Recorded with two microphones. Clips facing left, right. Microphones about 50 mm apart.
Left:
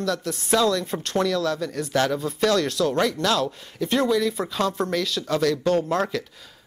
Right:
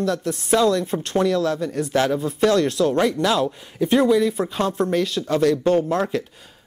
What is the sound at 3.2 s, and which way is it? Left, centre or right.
Speech, centre.